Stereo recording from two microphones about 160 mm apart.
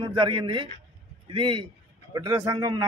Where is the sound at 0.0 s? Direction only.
30° right (ahead or behind).